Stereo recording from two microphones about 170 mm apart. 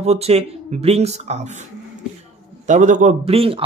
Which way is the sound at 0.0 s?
40° right (ahead or behind).